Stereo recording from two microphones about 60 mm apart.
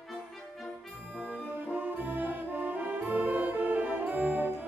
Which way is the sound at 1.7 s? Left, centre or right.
Right.